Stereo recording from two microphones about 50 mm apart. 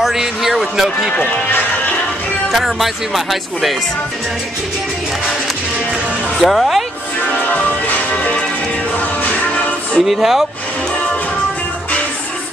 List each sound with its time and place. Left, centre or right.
0.0 s speech: centre
2.5 s speech: centre
6.4 s speech: centre
7.4 s music: left
10.0 s speech: centre